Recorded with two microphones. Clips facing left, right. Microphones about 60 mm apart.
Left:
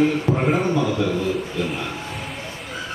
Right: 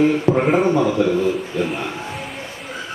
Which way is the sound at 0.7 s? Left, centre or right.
Right.